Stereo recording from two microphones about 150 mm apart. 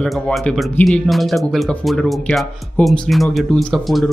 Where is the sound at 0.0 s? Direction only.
Centre (ahead or behind).